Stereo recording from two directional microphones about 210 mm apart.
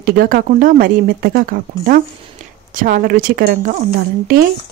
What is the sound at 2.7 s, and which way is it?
A woman's voice, 40° right (ahead or behind).